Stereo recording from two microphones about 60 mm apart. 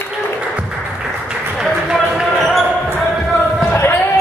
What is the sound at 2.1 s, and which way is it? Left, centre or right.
Basketball bounce, centre.